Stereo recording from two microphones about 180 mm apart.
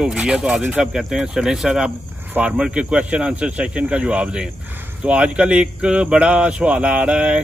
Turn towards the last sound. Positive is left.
turn(degrees=-5)  # may be behind; listen again after turning